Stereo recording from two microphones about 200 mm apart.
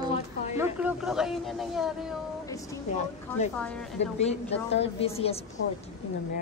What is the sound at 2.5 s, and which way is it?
Speech, 15° left (ahead or behind).